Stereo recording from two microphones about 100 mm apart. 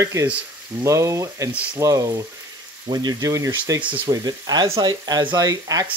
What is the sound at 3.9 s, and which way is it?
Speech, 50° right (ahead or behind).